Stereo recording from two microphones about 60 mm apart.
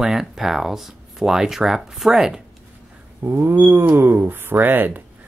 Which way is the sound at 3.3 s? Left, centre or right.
Right.